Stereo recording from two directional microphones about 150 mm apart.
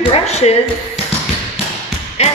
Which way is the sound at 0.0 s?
45° left (ahead or behind).